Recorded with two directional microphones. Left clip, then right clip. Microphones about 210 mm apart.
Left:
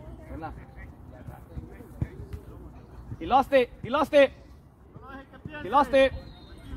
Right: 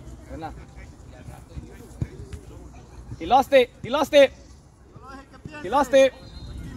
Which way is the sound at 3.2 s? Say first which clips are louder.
Right 4 dB; 50° right (ahead or behind).